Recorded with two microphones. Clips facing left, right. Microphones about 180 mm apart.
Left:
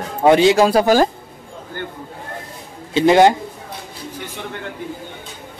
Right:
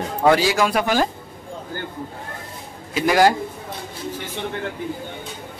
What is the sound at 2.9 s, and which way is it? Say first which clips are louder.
Speech: left 5 dB; 25° left (ahead or behind).